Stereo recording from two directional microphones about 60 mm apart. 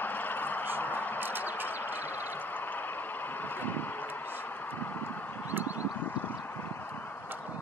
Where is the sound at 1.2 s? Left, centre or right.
Right.